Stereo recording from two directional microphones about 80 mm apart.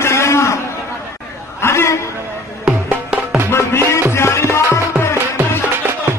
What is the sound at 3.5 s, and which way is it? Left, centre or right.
Music, left.